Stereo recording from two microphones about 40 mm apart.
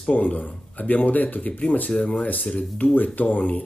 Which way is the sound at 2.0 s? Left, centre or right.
Left.